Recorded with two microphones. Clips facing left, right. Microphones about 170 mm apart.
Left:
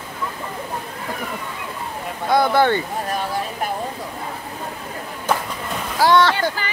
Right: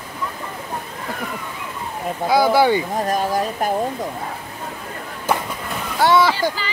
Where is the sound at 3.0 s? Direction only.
40° right (ahead or behind).